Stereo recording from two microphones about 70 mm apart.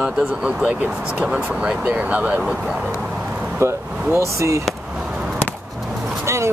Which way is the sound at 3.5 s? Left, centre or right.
Right.